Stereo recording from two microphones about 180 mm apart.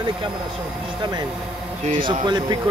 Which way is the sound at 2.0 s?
25° right (ahead or behind).